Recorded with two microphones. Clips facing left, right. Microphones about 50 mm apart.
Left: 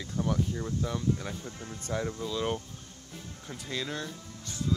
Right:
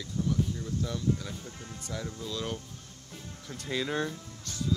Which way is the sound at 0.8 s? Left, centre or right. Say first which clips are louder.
Even; left.